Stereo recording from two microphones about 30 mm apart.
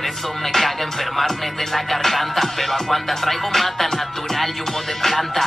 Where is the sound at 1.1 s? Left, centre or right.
Centre.